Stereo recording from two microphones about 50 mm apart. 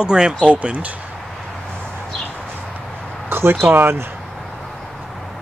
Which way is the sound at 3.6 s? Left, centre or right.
Right.